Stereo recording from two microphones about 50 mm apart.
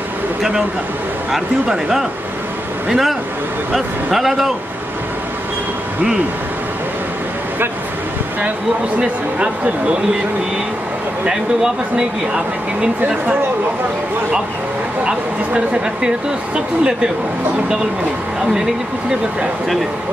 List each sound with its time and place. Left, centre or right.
1.3 s a man's voice: centre
9.0 s speech: right
15.0 s speech: centre